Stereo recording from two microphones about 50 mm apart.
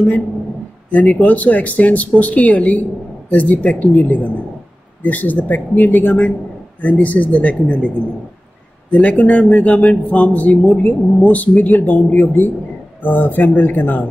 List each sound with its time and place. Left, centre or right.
1.0 s speech: left
8.9 s speech: left